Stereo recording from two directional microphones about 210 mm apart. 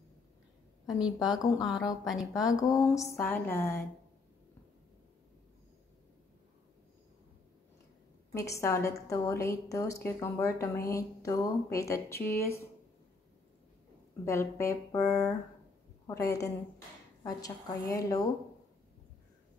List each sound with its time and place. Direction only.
0.8 s a woman's voice: 5° right (ahead or behind)
2.3 s a woman's voice: 15° left (ahead or behind)
8.3 s a woman's voice: 15° left (ahead or behind)
14.2 s a woman's voice: 15° left (ahead or behind)